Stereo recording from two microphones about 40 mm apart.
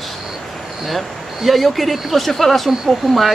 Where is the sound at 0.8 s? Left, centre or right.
Centre.